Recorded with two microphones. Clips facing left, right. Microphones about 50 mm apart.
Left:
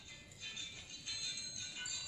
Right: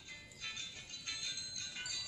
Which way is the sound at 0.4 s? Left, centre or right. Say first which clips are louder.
Right 2 dB; right.